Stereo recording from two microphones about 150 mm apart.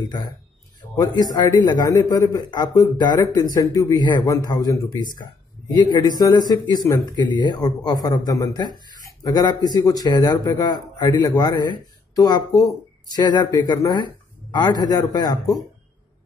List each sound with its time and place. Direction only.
0.0 s speech: 25° left (ahead or behind)